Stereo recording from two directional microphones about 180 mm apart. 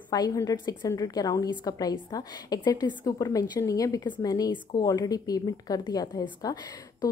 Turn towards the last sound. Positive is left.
turn(degrees=20)  # may be behind; listen again after turning